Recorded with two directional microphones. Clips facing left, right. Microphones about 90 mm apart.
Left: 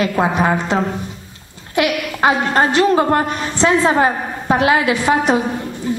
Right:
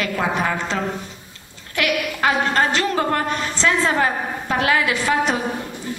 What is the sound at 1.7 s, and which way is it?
A woman's voice, 20° left (ahead or behind).